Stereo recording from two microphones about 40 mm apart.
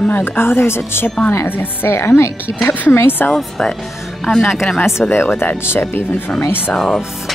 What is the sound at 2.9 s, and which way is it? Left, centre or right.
Speech, left.